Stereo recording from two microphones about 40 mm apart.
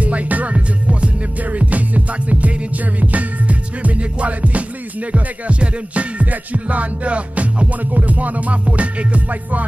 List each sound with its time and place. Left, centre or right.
0.0 s music: right